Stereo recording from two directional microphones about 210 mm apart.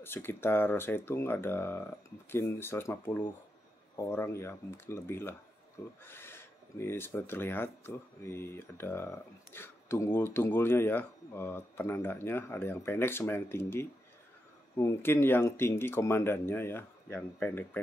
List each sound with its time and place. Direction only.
0.0 s speech: 10° left (ahead or behind)